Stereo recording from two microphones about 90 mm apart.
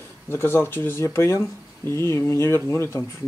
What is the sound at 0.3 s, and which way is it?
Speech, 25° left (ahead or behind).